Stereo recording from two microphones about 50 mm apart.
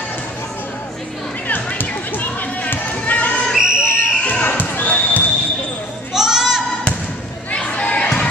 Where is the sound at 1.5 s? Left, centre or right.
Left.